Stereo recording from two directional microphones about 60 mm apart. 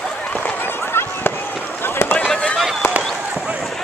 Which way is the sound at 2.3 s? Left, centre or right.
Centre.